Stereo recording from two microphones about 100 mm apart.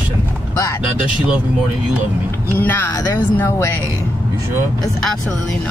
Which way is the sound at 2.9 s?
40° left (ahead or behind).